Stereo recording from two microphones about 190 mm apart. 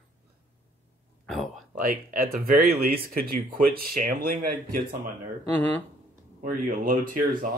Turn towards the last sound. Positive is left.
turn(degrees=-45)  # may be behind; listen again after turning